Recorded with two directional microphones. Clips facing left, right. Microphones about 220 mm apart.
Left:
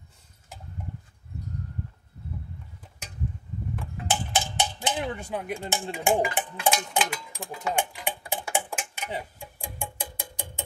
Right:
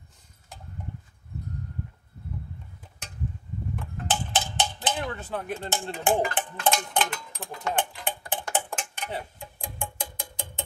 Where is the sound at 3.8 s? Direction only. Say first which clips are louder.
Left 1 dB; 10° left (ahead or behind).